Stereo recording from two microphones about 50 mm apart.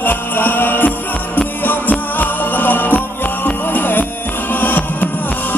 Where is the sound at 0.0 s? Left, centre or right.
Left.